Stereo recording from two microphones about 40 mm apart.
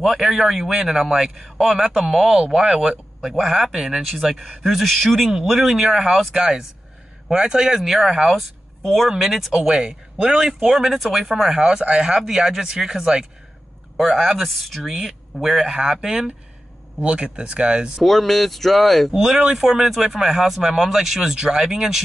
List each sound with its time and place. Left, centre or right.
0.2 s speech: centre
3.3 s speech: centre
3.7 s speech: centre
4.8 s speech: centre
5.5 s speech: centre
13.9 s speech: centre
17.0 s speech: right
18.0 s speech: centre
19.1 s speech: centre